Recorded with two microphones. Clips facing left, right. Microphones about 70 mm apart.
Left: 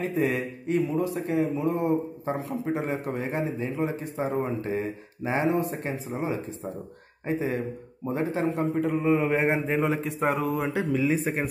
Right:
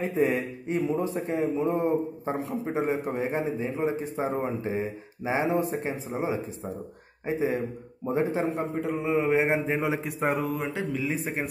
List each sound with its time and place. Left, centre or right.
0.2 s a man's voice: right
2.6 s a man's voice: centre
8.7 s mantra: centre